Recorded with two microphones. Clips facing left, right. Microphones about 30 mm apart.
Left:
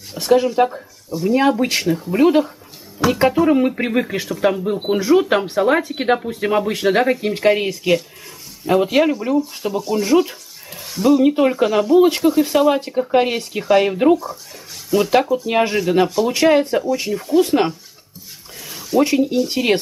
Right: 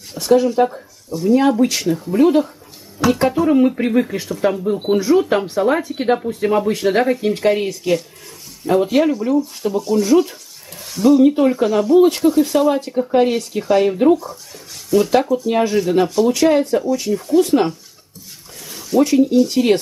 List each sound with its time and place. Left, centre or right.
0.2 s speech: centre
3.7 s speech: left
4.3 s speech: centre
11.2 s speech: centre
14.1 s speech: centre
18.7 s a sound: centre
19.0 s speech: centre